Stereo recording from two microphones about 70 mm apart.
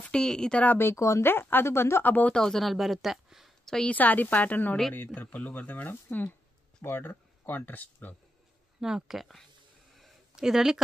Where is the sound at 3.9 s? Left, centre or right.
Left.